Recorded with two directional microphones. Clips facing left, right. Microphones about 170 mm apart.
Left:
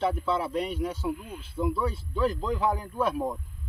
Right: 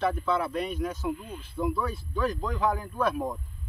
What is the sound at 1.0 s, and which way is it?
Speech, 5° left (ahead or behind).